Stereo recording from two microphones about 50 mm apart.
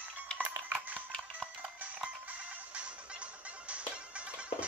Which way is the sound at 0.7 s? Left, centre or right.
Right.